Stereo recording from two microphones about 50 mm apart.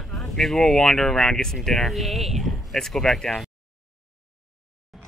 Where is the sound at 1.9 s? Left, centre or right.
Centre.